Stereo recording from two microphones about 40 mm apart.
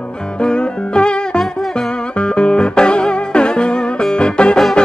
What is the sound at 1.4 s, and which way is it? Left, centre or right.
Music, centre.